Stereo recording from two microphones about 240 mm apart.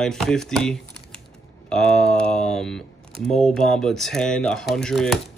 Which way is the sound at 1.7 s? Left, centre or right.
Centre.